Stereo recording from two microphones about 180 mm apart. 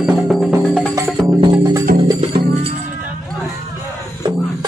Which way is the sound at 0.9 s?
20° right (ahead or behind).